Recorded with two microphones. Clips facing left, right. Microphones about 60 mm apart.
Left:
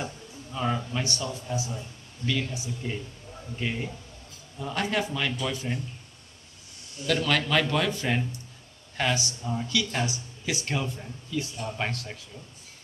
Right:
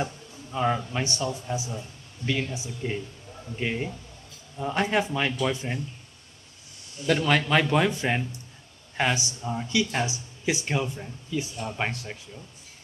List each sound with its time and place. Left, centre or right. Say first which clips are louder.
0.0 s a sound: right 4 dB; centre
0.9 s a man's voice: right 2 dB; right
7.1 s a man's voice: right 3 dB; centre